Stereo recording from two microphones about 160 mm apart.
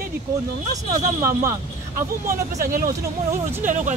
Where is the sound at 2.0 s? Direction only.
60° right (ahead or behind).